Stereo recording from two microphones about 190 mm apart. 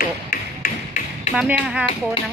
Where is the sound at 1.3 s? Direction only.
5° right (ahead or behind).